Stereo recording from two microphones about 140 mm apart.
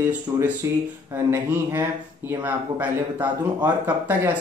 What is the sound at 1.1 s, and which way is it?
Speech, 15° right (ahead or behind).